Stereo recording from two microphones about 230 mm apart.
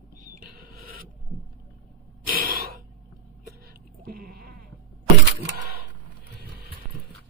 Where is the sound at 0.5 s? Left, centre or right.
Right.